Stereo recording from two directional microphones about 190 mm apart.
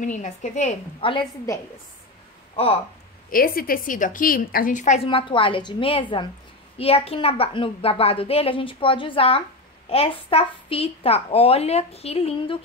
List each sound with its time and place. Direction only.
0.0 s a woman's voice: 40° left (ahead or behind)
1.1 s a woman's voice: 20° left (ahead or behind)
2.5 s speech: 30° left (ahead or behind)
3.3 s a woman's voice: 50° left (ahead or behind); by 12.5 s 30° left (ahead or behind)